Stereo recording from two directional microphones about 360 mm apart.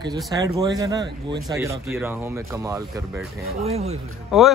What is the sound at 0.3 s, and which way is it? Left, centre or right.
Speech, centre.